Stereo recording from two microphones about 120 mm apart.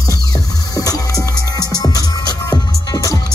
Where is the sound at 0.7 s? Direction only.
30° left (ahead or behind).